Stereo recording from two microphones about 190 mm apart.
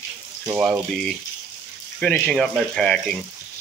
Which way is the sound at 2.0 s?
5° left (ahead or behind).